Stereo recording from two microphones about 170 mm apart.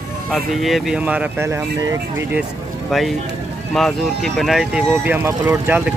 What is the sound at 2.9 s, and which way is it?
Speech, centre (ahead or behind).